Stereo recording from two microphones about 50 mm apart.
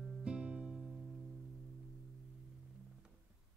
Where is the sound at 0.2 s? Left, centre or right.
Right.